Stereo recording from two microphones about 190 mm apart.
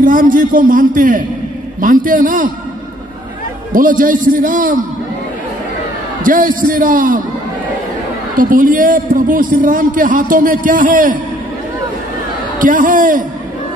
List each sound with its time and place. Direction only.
0.0 s a man's voice: 45° right (ahead or behind)
3.7 s a man's voice: 45° right (ahead or behind)
6.2 s a man's voice: 45° right (ahead or behind)
8.4 s a man's voice: 45° right (ahead or behind)
12.5 s a man's voice: 45° right (ahead or behind)